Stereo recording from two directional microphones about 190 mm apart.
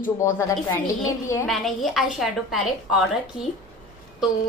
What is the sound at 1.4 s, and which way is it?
A woman's voice, centre (ahead or behind).